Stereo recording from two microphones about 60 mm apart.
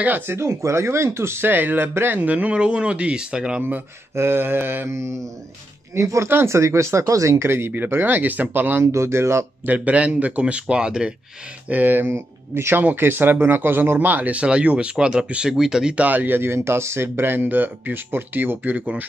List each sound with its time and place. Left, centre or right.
0.3 s speech: right
2.1 s speech: right
3.6 s speech: right
4.8 s speech: right
6.2 s speech: right
8.9 s speech: right
9.7 s speech: right
11.7 s speech: right
12.1 s speech: right; by 16.0 s centre
16.0 s speech: right